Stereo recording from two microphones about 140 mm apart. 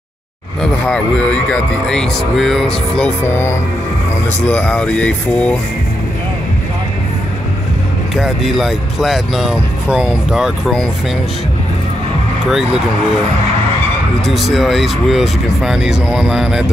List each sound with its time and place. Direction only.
0.6 s speech: 5° left (ahead or behind)
3.3 s speech: 15° left (ahead or behind)
8.2 s speech: centre (ahead or behind)
12.4 s speech: 5° right (ahead or behind)
14.2 s speech: centre (ahead or behind)